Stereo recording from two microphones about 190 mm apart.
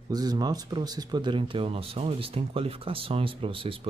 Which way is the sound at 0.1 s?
20° right (ahead or behind).